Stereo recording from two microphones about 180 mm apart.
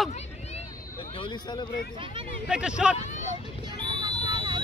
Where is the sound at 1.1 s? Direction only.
25° left (ahead or behind).